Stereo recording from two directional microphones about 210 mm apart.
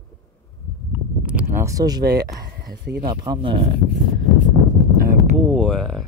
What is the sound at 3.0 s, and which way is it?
Speech, 20° right (ahead or behind).